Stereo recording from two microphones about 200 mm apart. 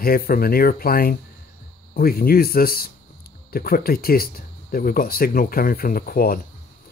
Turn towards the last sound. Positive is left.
turn(degrees=50)  # may be behind; listen again after turning